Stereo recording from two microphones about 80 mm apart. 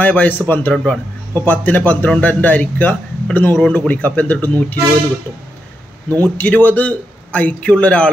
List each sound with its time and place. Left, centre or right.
0.0 s a man's voice: centre
6.0 s a man's voice: left